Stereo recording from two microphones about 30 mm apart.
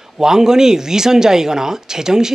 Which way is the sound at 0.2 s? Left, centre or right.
Centre.